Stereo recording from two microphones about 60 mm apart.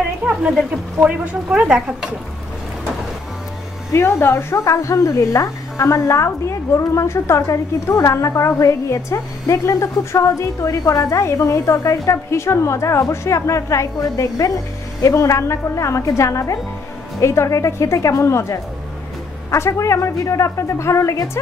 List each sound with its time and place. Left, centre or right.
0.4 s speech: centre
3.9 s speech: left
4.6 s a woman's voice: left